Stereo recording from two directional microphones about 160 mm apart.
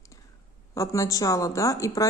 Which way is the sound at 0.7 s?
20° left (ahead or behind).